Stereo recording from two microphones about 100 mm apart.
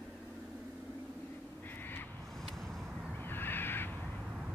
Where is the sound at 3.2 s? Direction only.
20° left (ahead or behind).